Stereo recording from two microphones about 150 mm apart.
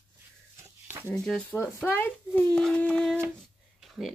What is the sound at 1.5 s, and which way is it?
Speech, 15° left (ahead or behind).